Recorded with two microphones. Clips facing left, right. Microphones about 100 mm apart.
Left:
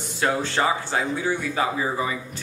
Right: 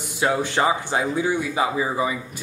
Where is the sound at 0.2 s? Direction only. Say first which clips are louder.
Right 2 dB; 15° right (ahead or behind).